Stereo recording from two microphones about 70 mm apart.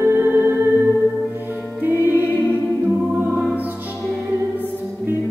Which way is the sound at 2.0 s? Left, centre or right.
Right.